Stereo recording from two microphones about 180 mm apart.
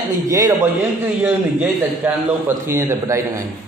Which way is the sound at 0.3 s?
20° right (ahead or behind).